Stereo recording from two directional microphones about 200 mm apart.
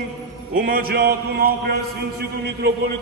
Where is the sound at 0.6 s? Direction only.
45° right (ahead or behind).